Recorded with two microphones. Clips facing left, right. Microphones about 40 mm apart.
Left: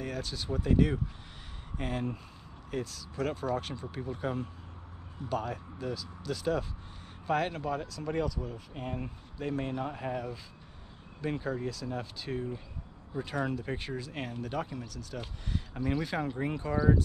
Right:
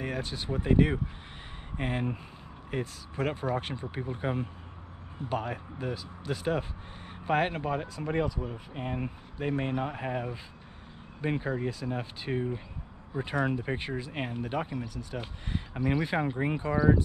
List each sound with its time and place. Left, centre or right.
0.0 s speech: right
16.7 s speech: centre